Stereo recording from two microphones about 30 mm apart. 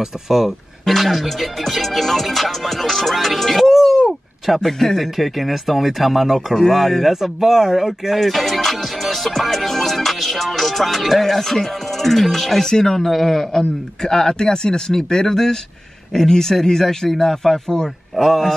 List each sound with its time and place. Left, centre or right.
0.0 s speech: centre
0.8 s music: centre
3.6 s a sound: centre
4.6 s a man's voice: centre
4.9 s music: centre
7.1 s speech: centre
8.2 s music: centre
11.4 s a man's voice: centre
12.6 s a man's voice: centre
18.2 s speech: centre